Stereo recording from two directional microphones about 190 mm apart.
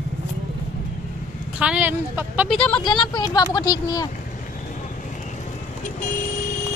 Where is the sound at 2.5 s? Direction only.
5° left (ahead or behind).